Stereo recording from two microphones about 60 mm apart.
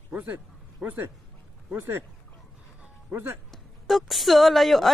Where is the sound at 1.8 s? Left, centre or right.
Right.